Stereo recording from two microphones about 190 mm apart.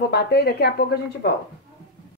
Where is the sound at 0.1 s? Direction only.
60° left (ahead or behind).